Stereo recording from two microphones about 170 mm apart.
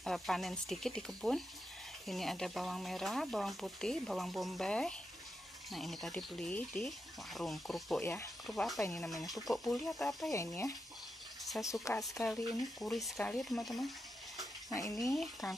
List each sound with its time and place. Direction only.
0.0 s speech: centre (ahead or behind)
8.0 s speech: 15° left (ahead or behind)
8.5 s speech: centre (ahead or behind)
10.3 s speech: 15° left (ahead or behind)
12.8 s speech: centre (ahead or behind)
14.7 s speech: 20° left (ahead or behind)